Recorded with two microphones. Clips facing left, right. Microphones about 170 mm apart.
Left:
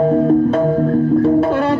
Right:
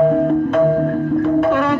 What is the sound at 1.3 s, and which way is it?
Speech, 30° left (ahead or behind).